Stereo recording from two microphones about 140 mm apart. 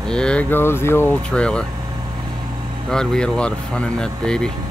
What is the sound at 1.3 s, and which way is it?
Mantra, 5° left (ahead or behind).